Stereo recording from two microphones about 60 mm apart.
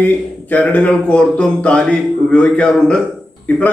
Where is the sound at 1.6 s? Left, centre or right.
Centre.